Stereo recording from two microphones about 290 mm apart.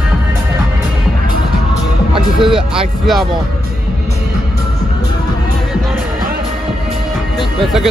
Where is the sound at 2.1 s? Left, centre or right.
Centre.